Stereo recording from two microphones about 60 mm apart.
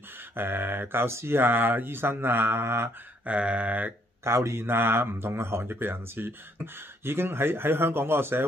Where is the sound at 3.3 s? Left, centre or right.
Right.